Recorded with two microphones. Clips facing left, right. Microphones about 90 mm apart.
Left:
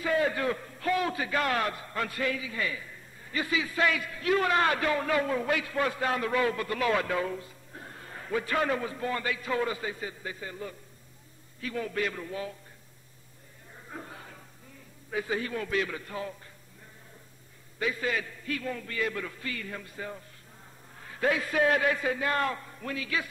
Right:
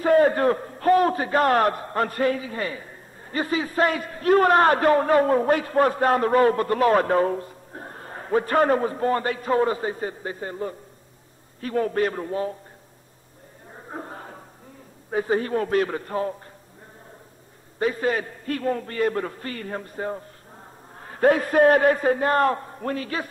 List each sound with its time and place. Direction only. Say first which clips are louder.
0.0 s a man's voice: right 10 dB; 45° right (ahead or behind)
13.7 s chatter: right 7 dB; 40° right (ahead or behind)
15.0 s a man's voice: right 8 dB; 40° right (ahead or behind)
17.7 s a man's voice: right 7 dB; 40° right (ahead or behind)